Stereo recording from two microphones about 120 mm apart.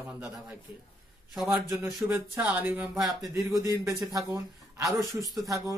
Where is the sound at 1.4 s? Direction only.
20° right (ahead or behind).